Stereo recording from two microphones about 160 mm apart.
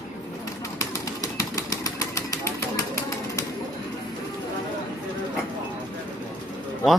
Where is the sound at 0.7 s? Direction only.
20° left (ahead or behind).